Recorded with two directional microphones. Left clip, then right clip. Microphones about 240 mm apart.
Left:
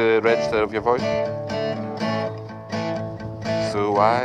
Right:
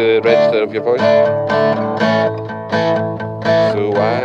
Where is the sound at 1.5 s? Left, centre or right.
Right.